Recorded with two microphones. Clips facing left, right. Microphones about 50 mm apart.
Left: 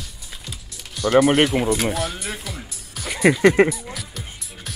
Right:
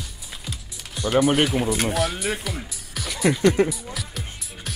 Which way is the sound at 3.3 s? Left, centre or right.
Left.